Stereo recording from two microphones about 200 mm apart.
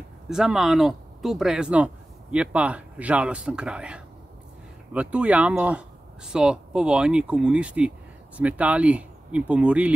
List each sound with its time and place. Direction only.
0.3 s speech: 5° right (ahead or behind)